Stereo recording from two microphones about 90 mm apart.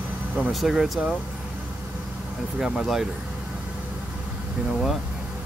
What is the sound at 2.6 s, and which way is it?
Speech, 5° right (ahead or behind).